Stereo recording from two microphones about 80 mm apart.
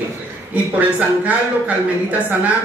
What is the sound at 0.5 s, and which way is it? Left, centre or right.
A woman's voice, centre.